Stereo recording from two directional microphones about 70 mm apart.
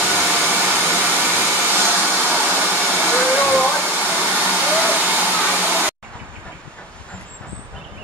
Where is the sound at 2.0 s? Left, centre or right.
Right.